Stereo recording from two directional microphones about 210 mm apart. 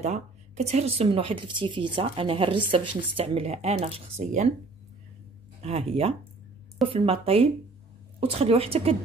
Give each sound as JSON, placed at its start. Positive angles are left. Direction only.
{"t": 0.0, "sound": "speech", "side_deg": -30}
{"t": 5.6, "sound": "speech", "side_deg": -30}